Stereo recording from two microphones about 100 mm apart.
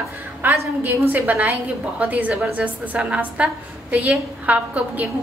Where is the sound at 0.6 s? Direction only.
20° right (ahead or behind).